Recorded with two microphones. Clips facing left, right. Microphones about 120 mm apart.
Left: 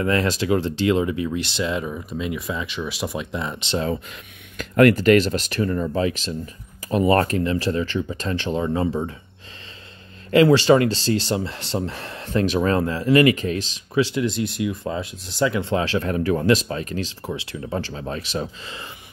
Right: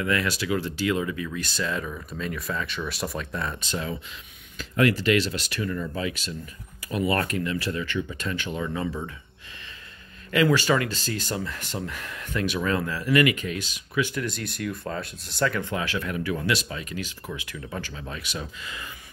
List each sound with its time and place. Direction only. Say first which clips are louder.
0.0 s speech: left 5 dB; 35° left (ahead or behind)
4.6 s speech: left 7 dB; 55° left (ahead or behind); by 9.1 s 35° left (ahead or behind)
10.3 s speech: left 7 dB; 35° left (ahead or behind)
14.3 s speech: left 9 dB; 55° right (ahead or behind)
14.8 s speech: left 5 dB; 15° left (ahead or behind); by 18.9 s 35° left (ahead or behind)